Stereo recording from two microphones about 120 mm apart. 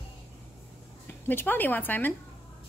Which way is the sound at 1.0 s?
15° left (ahead or behind).